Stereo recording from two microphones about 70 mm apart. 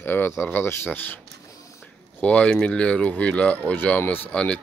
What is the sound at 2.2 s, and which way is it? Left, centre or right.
Speech, centre.